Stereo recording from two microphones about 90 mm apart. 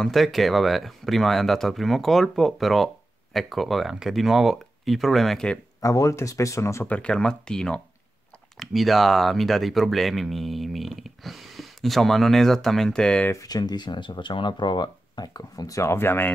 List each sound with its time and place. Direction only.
0.0 s speech: centre (ahead or behind)
5.8 s speech: 35° left (ahead or behind)
6.9 s speech: 10° left (ahead or behind)
13.3 s speech: 45° left (ahead or behind); by 16.3 s 25° left (ahead or behind)